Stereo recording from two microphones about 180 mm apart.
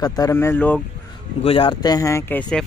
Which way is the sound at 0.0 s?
20° left (ahead or behind).